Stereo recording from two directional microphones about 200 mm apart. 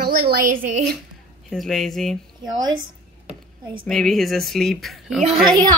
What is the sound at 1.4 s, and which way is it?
Speech, centre (ahead or behind).